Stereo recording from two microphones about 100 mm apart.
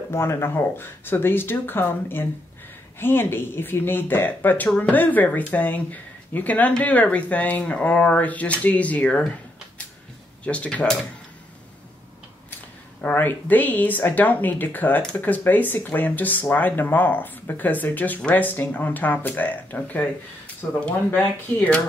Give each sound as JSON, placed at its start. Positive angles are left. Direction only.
{"t": 0.1, "sound": "speech", "side_deg": 25}
{"t": 10.4, "sound": "speech", "side_deg": 10}
{"t": 13.0, "sound": "speech", "side_deg": 20}